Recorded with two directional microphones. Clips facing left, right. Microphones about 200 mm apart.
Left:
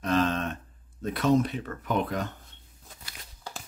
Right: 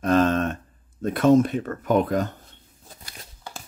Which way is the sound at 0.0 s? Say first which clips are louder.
Right 6 dB; 50° right (ahead or behind).